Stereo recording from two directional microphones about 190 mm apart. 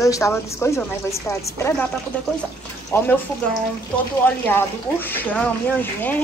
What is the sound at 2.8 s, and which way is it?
Speech, 10° left (ahead or behind).